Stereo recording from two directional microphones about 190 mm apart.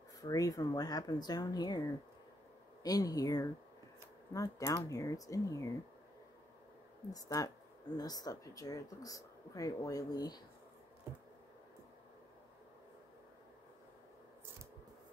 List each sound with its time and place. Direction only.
0.2 s speech: 20° left (ahead or behind)
7.1 s speech: 20° left (ahead or behind)
11.1 s a sound: 15° right (ahead or behind)